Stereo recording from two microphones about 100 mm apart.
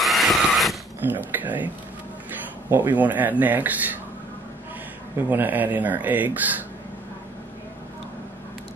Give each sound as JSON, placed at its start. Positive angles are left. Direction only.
{"t": 0.0, "sound": "mechanisms", "side_deg": 0}
{"t": 1.0, "sound": "speech", "side_deg": -15}
{"t": 2.7, "sound": "speech", "side_deg": -20}
{"t": 5.3, "sound": "speech", "side_deg": -15}